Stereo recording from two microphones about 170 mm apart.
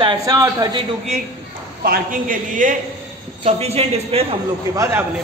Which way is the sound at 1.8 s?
55° right (ahead or behind).